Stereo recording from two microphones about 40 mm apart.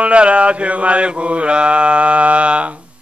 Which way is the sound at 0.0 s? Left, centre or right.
Right.